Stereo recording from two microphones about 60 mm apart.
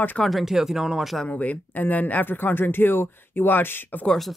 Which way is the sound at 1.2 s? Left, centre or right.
Left.